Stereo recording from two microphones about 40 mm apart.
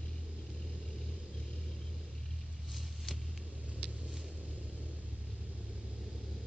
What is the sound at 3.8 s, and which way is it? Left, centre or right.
Vehicle, right.